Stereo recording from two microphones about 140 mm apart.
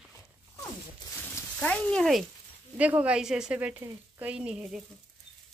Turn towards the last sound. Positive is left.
turn(degrees=-10)  # may be behind; listen again after turning